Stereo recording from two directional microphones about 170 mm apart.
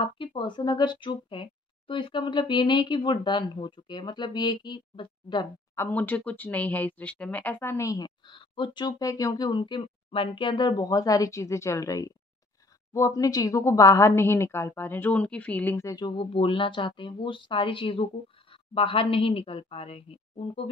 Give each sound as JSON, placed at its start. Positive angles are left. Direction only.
{"t": 0.0, "sound": "a woman's voice", "side_deg": 30}
{"t": 5.8, "sound": "a woman's voice", "side_deg": 10}